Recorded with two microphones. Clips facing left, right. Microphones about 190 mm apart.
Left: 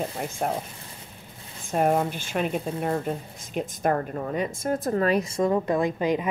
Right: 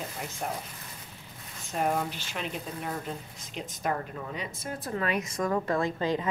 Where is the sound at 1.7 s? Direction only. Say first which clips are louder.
Left 6 dB; 50° left (ahead or behind); by 6.2 s 15° left (ahead or behind).